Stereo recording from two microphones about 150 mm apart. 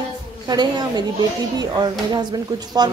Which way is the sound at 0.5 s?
25° right (ahead or behind).